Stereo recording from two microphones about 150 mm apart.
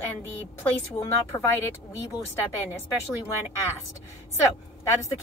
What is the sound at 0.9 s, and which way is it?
Speech, 15° left (ahead or behind).